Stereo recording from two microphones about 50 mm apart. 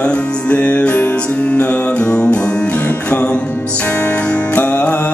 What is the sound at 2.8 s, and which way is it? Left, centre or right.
Music, left.